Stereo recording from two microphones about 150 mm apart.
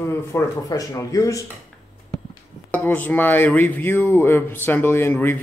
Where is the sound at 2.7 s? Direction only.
10° left (ahead or behind).